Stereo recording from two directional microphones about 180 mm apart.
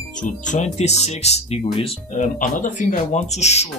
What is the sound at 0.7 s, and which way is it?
Speech, 40° left (ahead or behind).